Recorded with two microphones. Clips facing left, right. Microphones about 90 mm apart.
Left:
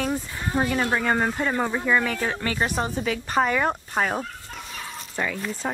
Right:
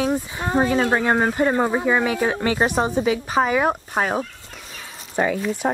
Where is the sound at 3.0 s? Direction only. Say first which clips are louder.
Right 1 dB; 10° right (ahead or behind).